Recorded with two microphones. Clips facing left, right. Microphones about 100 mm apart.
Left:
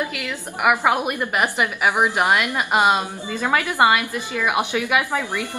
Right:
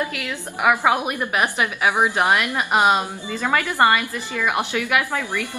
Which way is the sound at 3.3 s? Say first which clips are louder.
Left 1 dB; 15° left (ahead or behind).